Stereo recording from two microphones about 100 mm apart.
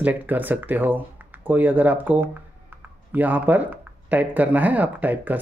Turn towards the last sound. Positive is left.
turn(degrees=-15)  # may be behind; listen again after turning